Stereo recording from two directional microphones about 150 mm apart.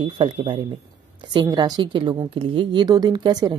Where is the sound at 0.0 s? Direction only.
35° right (ahead or behind).